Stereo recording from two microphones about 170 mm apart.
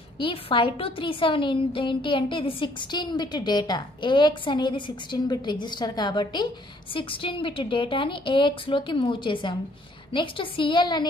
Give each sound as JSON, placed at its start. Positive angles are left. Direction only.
{"t": 0.2, "sound": "a woman's voice", "side_deg": 30}